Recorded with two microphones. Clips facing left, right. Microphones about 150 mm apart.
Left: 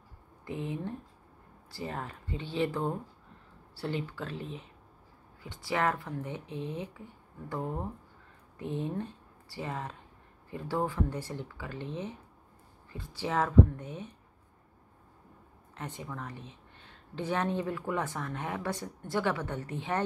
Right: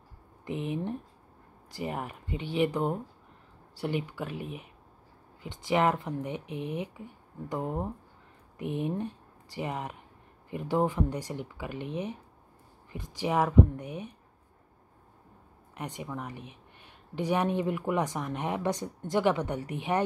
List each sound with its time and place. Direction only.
0.5 s speech: 20° right (ahead or behind)
15.7 s speech: 15° right (ahead or behind)